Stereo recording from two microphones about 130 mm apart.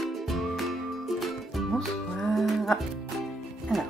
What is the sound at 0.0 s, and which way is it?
Music, centre (ahead or behind).